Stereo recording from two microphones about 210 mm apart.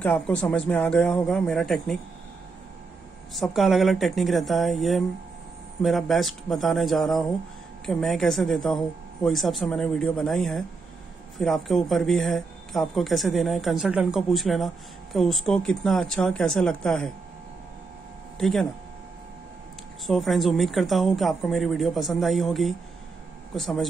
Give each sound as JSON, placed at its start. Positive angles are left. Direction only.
{"t": 0.0, "sound": "speech", "side_deg": 5}
{"t": 3.3, "sound": "speech", "side_deg": 0}
{"t": 18.4, "sound": "speech", "side_deg": 0}
{"t": 20.1, "sound": "speech", "side_deg": 0}